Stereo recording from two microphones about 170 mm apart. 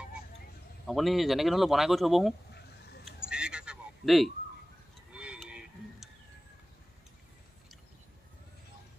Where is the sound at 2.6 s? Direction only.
75° left (ahead or behind).